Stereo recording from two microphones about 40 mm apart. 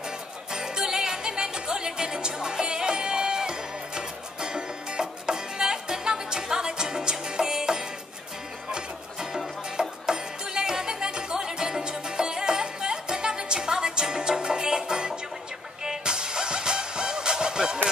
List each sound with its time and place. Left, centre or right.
0.5 s music: centre